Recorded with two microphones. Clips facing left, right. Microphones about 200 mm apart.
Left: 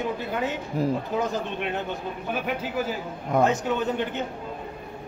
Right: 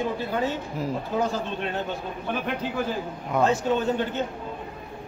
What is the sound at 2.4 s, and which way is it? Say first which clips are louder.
Speech: even; 5° left (ahead or behind).